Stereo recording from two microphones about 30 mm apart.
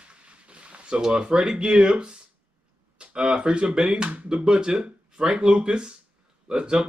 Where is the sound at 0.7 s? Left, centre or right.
Right.